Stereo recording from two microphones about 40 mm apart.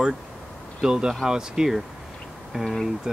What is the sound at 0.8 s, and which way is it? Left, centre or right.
Speech, centre.